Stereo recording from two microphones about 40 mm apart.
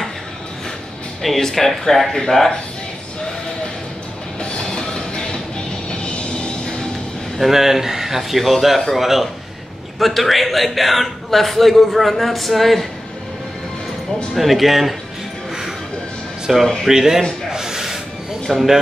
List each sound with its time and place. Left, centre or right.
1.2 s speech: centre
4.4 s music: left
7.3 s a man's voice: centre
14.3 s a man's voice: centre
16.5 s speech: centre
17.5 s a sound: centre
18.5 s a man's voice: centre